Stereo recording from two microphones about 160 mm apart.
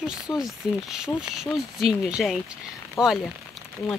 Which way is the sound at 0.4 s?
5° right (ahead or behind).